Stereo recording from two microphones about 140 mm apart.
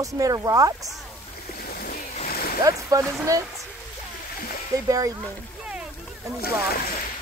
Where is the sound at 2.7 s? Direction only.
25° right (ahead or behind).